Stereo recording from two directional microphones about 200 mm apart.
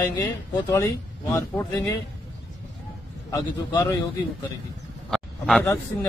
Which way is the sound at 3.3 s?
20° left (ahead or behind).